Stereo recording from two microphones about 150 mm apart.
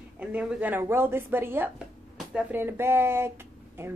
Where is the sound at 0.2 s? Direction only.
10° right (ahead or behind).